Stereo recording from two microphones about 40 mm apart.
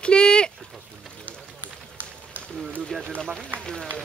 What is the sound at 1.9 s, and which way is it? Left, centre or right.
Run, right.